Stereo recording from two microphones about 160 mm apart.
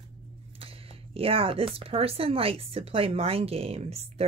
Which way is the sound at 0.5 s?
35° right (ahead or behind).